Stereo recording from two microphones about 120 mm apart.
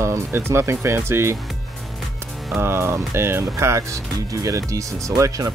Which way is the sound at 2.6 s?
20° right (ahead or behind).